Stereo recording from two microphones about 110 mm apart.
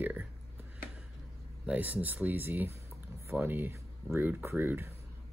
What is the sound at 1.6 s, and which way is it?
Speech, 15° right (ahead or behind).